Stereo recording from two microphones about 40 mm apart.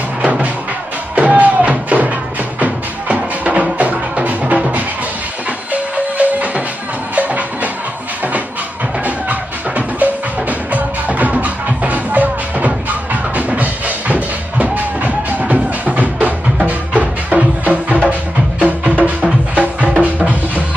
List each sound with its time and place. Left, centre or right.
0.2 s music: right
9.0 s music: right